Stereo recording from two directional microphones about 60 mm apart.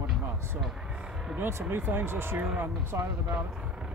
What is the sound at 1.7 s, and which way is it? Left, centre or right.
Speech, right.